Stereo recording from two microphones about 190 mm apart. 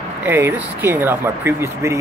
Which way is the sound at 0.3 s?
10° right (ahead or behind).